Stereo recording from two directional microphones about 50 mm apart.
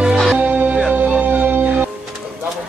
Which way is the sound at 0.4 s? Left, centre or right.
Right.